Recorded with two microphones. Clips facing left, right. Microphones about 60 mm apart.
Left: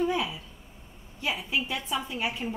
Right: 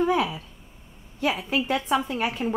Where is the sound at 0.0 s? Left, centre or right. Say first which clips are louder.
Right 5 dB; right.